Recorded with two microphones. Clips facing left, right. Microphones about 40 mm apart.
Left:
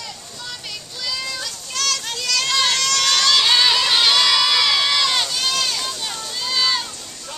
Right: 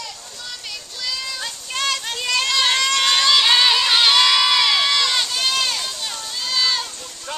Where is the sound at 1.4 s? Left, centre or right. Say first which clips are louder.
Right 4 dB; centre.